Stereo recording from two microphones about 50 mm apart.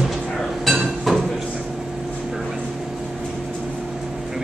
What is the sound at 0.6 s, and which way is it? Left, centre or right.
Dishes, centre.